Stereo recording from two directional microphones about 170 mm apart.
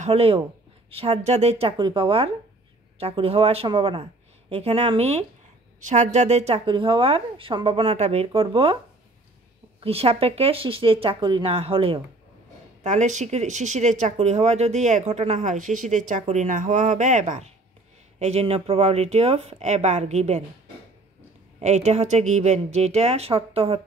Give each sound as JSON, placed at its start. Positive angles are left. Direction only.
{"t": 0.0, "sound": "a woman's voice", "side_deg": -35}
{"t": 9.8, "sound": "a woman's voice", "side_deg": -35}
{"t": 12.8, "sound": "a woman's voice", "side_deg": -45}
{"t": 21.5, "sound": "a woman's voice", "side_deg": -40}